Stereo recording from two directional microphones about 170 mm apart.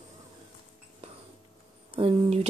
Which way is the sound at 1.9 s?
35° right (ahead or behind).